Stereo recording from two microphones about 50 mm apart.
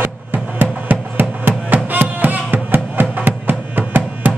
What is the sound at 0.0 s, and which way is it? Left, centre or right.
Music, right.